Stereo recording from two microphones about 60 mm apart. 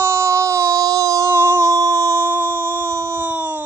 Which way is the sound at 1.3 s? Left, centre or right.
Right.